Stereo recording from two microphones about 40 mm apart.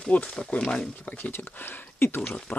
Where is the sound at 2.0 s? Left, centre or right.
Left.